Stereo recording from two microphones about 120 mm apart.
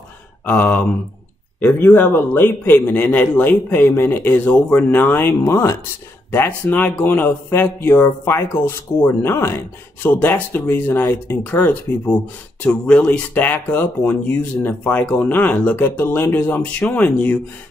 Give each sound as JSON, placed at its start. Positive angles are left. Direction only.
{"t": 0.5, "sound": "speech", "side_deg": 10}